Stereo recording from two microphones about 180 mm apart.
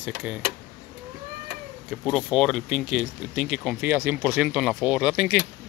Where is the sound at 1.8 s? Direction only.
Centre (ahead or behind).